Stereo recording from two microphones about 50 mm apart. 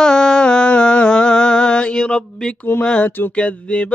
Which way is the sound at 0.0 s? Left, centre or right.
Centre.